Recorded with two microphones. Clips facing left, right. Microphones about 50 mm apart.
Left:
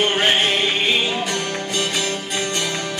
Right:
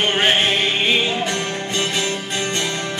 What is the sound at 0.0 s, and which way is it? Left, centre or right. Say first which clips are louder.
Music: even; right.